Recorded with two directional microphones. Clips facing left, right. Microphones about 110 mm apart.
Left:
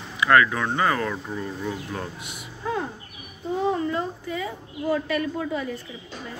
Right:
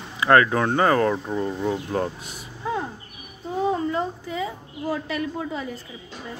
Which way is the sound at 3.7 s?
25° right (ahead or behind).